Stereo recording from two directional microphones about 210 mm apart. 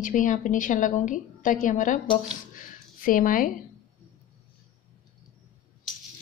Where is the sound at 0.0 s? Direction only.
35° left (ahead or behind).